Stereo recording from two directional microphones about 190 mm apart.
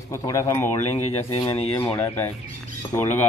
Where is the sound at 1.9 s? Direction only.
10° left (ahead or behind).